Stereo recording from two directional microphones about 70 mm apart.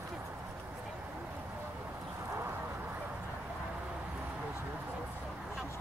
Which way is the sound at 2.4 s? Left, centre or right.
Right.